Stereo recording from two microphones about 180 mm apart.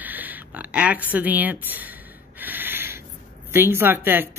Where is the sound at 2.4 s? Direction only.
10° right (ahead or behind).